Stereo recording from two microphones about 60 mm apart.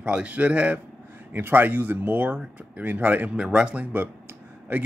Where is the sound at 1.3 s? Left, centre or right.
Right.